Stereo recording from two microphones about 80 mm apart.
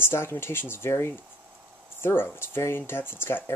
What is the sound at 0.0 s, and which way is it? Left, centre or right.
Speech, left.